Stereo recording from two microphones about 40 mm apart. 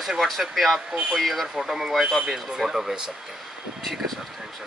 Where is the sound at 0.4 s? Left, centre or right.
Centre.